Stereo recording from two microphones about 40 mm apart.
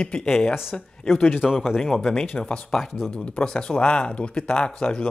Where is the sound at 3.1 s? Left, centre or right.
Left.